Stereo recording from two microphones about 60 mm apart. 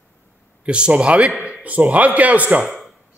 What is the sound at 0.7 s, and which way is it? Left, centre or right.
A man's voice, centre.